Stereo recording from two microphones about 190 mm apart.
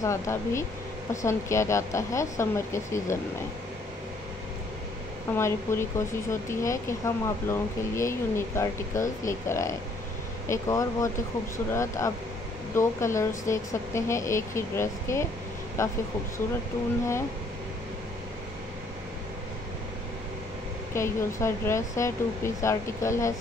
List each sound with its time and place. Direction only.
0.0 s speech: 15° left (ahead or behind)
5.3 s speech: 15° left (ahead or behind)
20.9 s speech: 15° left (ahead or behind)